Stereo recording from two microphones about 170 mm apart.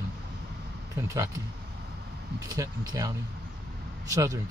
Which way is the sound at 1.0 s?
15° right (ahead or behind).